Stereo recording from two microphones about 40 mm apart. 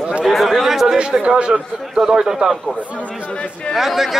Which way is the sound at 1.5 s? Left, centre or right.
Centre.